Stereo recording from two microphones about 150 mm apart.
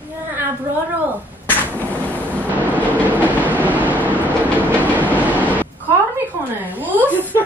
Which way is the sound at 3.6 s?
10° right (ahead or behind).